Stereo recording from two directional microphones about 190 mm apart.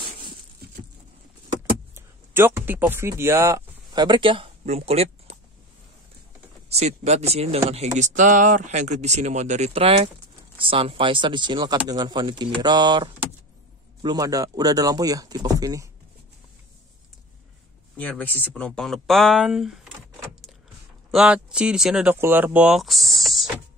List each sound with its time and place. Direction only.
0.0 s a sound: 25° right (ahead or behind)
2.0 s speech: 15° right (ahead or behind); by 5.4 s 35° right (ahead or behind)
6.7 s speech: 35° right (ahead or behind); by 15.9 s 20° right (ahead or behind)
17.9 s speech: 10° left (ahead or behind)
21.1 s speech: 5° right (ahead or behind)